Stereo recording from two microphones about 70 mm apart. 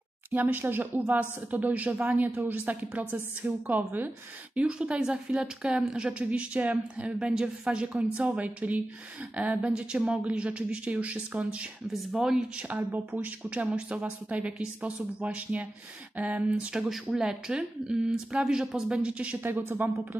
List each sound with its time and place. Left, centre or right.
0.3 s a woman's voice: right
11.9 s a woman's voice: centre
12.6 s a woman's voice: right; by 18.9 s centre
18.9 s a woman's voice: centre